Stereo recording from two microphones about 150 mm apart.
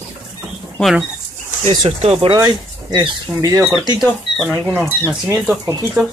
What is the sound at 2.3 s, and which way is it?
Speech, 25° right (ahead or behind).